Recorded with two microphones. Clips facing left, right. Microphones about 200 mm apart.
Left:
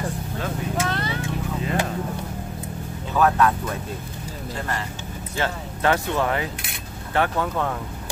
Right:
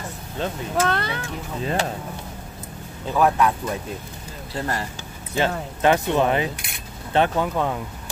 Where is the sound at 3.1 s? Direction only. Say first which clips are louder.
Even; 10° right (ahead or behind).